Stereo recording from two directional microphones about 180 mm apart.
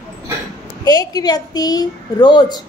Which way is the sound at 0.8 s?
20° left (ahead or behind).